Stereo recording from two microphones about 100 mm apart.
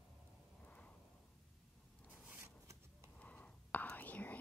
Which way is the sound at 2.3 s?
25° right (ahead or behind).